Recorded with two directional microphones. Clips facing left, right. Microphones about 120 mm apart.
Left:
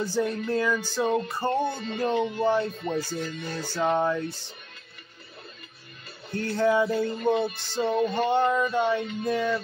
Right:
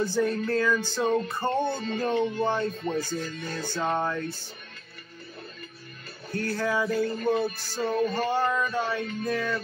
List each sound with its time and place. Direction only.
0.0 s music: 15° left (ahead or behind)
1.4 s music: 15° right (ahead or behind)
2.0 s music: 15° left (ahead or behind)
6.3 s music: 25° left (ahead or behind)